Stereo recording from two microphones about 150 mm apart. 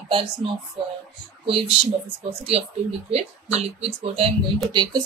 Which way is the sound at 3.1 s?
45° right (ahead or behind).